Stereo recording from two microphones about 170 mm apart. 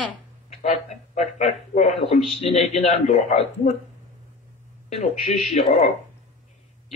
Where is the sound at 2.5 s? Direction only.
40° left (ahead or behind).